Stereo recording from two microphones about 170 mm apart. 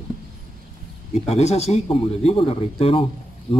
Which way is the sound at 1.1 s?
40° left (ahead or behind).